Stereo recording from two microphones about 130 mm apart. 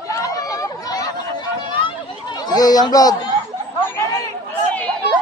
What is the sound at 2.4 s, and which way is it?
Speech, 30° left (ahead or behind).